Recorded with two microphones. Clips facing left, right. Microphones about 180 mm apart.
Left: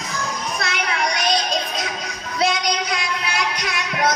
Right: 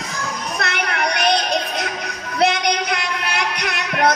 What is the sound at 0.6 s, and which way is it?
Music, 60° right (ahead or behind).